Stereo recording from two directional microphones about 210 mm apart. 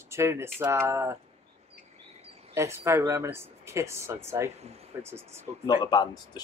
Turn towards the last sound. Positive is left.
turn(degrees=20)  # may be behind; listen again after turning